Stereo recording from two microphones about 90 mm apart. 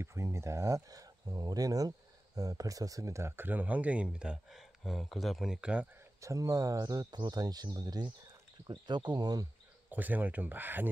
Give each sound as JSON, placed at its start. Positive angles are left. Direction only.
{"t": 0.0, "sound": "speech", "side_deg": -35}
{"t": 6.2, "sound": "speech", "side_deg": -35}
{"t": 9.8, "sound": "speech", "side_deg": -20}